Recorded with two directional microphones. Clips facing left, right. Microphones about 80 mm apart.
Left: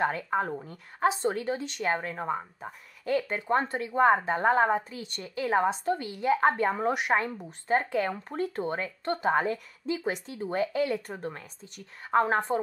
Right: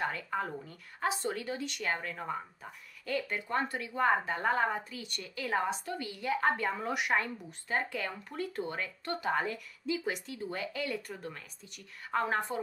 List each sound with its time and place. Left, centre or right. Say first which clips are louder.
0.0 s speech: left 7 dB; left